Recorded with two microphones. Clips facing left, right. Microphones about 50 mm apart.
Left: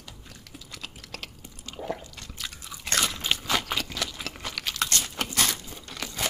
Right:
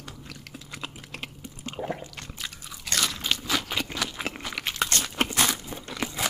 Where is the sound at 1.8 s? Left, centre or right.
Right.